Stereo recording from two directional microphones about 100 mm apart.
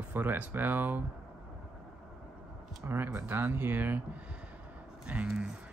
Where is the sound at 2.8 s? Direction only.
20° right (ahead or behind).